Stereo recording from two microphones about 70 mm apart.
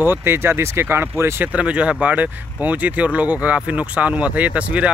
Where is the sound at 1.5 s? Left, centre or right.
Centre.